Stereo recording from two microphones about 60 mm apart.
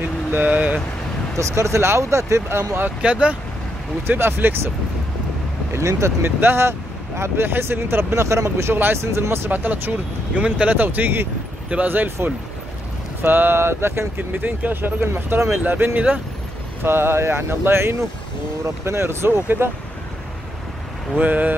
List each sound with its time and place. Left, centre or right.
0.3 s speech: right
1.4 s speech: right
3.0 s speech: right
4.2 s speech: right
5.7 s speech: right
6.2 s speech: right
8.7 s speech: right
9.5 s speech: right
10.8 s speech: right
14.3 s speech: right
16.8 s speech: right
21.2 s speech: right